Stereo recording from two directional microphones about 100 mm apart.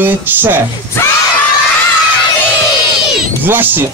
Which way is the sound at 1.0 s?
25° left (ahead or behind).